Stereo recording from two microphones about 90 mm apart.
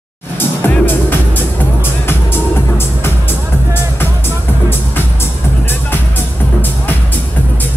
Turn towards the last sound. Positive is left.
turn(degrees=25)  # may be behind; listen again after turning